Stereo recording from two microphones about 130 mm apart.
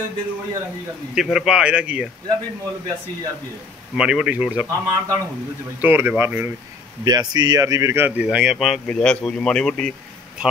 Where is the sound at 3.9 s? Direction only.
5° right (ahead or behind).